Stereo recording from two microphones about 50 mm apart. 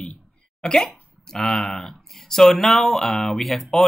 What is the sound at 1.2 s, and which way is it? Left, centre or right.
Speech, centre.